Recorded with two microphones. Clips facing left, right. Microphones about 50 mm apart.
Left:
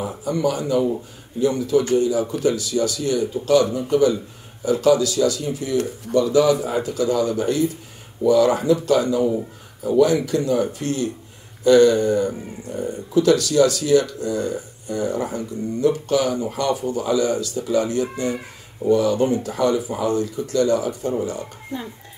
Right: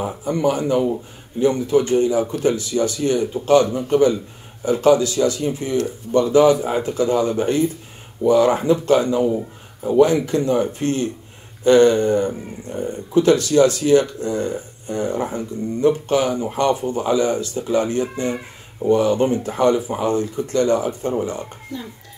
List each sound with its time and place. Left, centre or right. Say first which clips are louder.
0.2 s speech: right 2 dB; right
21.7 s dishes: left 2 dB; left